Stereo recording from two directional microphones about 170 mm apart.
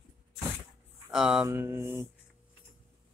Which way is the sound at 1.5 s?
15° right (ahead or behind).